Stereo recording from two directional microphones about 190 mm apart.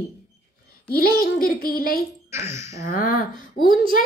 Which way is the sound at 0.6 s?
55° left (ahead or behind).